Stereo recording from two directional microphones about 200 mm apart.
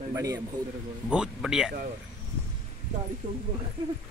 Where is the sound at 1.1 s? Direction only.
5° right (ahead or behind).